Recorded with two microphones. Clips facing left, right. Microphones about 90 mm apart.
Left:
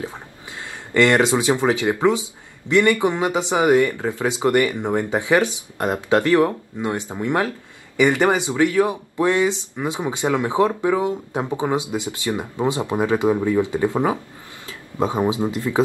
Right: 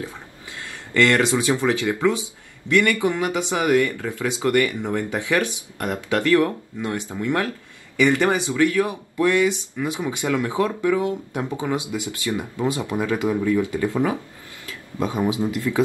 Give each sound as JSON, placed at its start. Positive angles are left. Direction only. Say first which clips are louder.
{"t": 0.0, "sound": "speech", "louder": "left 2 dB", "side_deg": 20}